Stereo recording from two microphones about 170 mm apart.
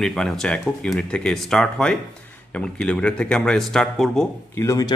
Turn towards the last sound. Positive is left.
turn(degrees=20)  # may be behind; listen again after turning